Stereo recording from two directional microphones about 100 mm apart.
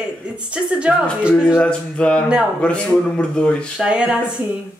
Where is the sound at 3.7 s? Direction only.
10° right (ahead or behind).